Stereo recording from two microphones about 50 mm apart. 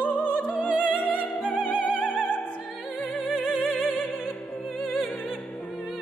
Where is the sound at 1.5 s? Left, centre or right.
Left.